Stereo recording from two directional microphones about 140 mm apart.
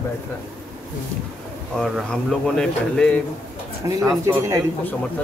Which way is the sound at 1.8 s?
Centre (ahead or behind).